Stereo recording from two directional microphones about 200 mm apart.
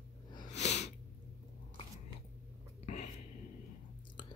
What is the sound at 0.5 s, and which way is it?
Sneeze, 35° left (ahead or behind).